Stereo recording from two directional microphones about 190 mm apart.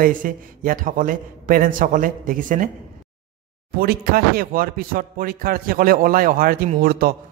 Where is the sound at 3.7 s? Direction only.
50° right (ahead or behind).